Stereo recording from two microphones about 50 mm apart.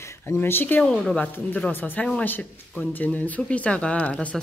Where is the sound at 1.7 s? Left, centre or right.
Left.